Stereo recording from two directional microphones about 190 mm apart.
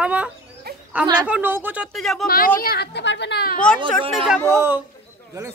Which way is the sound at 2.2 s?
50° left (ahead or behind).